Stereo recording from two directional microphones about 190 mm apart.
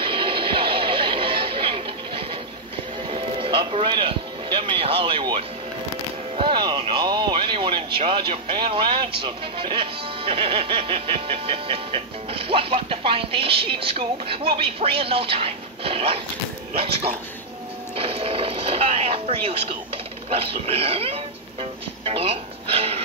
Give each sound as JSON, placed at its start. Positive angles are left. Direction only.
{"t": 0.0, "sound": "music", "side_deg": -25}
{"t": 6.3, "sound": "a sound", "side_deg": -25}
{"t": 8.3, "sound": "speech", "side_deg": -25}